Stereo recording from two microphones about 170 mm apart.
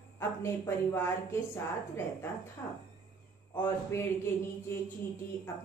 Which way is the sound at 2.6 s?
15° left (ahead or behind).